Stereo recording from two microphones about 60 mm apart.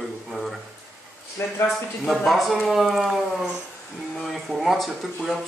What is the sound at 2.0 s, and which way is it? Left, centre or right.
A man's voice, centre.